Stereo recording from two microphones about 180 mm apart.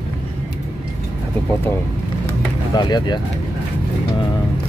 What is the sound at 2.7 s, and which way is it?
Speech, 25° left (ahead or behind).